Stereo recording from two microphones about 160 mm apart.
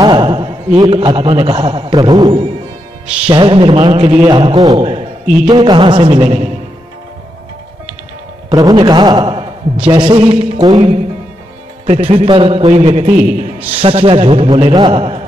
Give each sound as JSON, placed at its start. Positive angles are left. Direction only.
{"t": 0.0, "sound": "a man's voice", "side_deg": -30}
{"t": 5.2, "sound": "a man's voice", "side_deg": -5}
{"t": 5.5, "sound": "a man's voice", "side_deg": -30}
{"t": 8.5, "sound": "a man's voice", "side_deg": -25}
{"t": 13.7, "sound": "a man's voice", "side_deg": -35}